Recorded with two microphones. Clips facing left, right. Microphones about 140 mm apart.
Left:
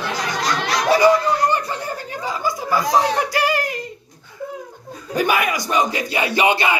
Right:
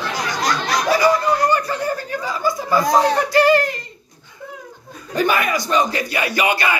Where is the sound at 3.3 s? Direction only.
10° left (ahead or behind).